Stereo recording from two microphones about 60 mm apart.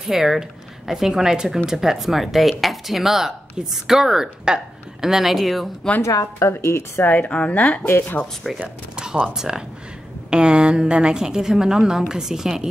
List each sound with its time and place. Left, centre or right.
0.0 s a woman's voice: centre
6.5 s speech: left
7.0 s a woman's voice: left
8.5 s a woman's voice: centre